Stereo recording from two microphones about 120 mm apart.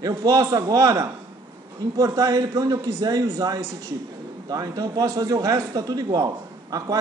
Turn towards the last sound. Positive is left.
turn(degrees=-30)  # may be behind; listen again after turning